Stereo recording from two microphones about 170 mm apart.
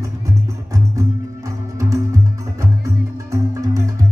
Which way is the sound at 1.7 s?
20° right (ahead or behind).